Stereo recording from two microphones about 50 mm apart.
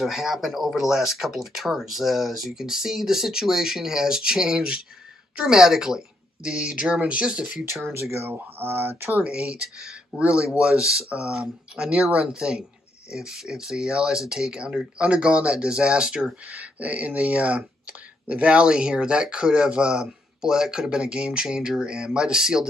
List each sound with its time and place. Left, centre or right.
0.0 s speech: centre
7.9 s speech: right
8.3 s speech: right
9.2 s speech: right
16.4 s speech: right; by 22.7 s centre